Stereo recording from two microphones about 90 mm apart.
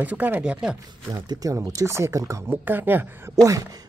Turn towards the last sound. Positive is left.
turn(degrees=-40)  # may be behind; listen again after turning